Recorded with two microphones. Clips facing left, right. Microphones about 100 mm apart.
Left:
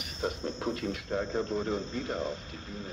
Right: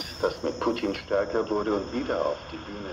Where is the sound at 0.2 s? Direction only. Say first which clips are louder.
Right 7 dB; 60° right (ahead or behind).